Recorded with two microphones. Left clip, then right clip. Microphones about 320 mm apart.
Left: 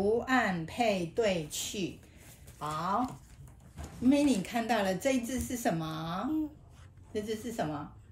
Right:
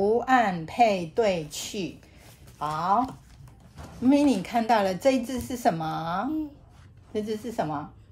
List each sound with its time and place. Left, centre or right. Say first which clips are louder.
0.2 s a woman's voice: right 7 dB; right